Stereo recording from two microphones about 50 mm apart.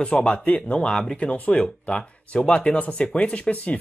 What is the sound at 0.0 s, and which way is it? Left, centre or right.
Speech, left.